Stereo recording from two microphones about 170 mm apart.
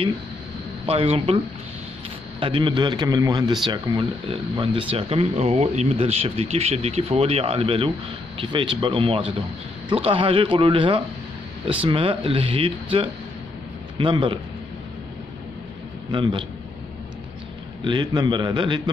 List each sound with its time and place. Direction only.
0.8 s speech: 35° right (ahead or behind)
2.4 s speech: 30° right (ahead or behind)
16.1 s speech: 30° right (ahead or behind)
17.8 s speech: 25° right (ahead or behind)